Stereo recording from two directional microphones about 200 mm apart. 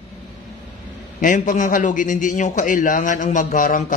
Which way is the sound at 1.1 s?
40° left (ahead or behind).